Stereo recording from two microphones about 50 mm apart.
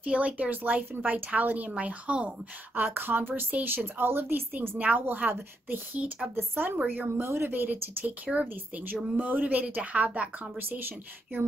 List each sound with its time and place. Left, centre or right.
0.0 s a woman's voice: right
2.7 s a woman's voice: right
7.5 s a woman's voice: right